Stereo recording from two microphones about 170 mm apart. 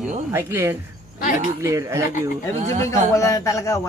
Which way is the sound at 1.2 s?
55° left (ahead or behind).